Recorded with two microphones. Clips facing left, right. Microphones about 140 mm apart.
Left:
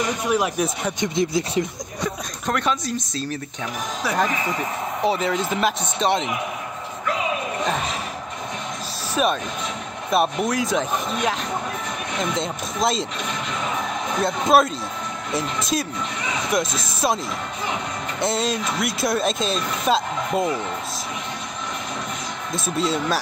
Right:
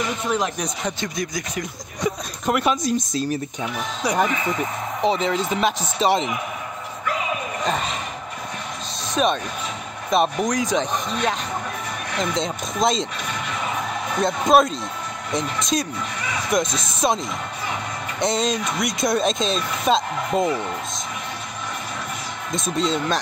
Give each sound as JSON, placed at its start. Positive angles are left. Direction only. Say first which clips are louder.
{"t": 0.3, "sound": "speech", "louder": "left 4 dB", "side_deg": 10}
{"t": 0.9, "sound": "speech", "louder": "left 6 dB", "side_deg": 20}
{"t": 2.0, "sound": "speech", "louder": "right 4 dB", "side_deg": -10}
{"t": 5.0, "sound": "speech", "louder": "right 1 dB", "side_deg": 5}
{"t": 7.6, "sound": "speech", "louder": "right 2 dB", "side_deg": 0}
{"t": 9.1, "sound": "speech", "louder": "right 1 dB", "side_deg": 5}
{"t": 14.2, "sound": "speech", "louder": "right 1 dB", "side_deg": 5}
{"t": 18.2, "sound": "speech", "louder": "right 1 dB", "side_deg": 5}
{"t": 22.5, "sound": "speech", "louder": "right 1 dB", "side_deg": 5}